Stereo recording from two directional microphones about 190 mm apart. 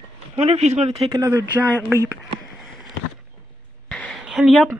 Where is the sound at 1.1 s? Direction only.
15° right (ahead or behind).